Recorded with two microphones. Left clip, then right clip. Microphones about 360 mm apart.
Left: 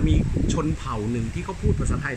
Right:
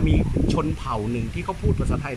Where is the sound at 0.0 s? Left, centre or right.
Centre.